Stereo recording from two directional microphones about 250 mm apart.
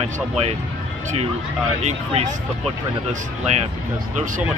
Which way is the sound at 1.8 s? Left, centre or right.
Right.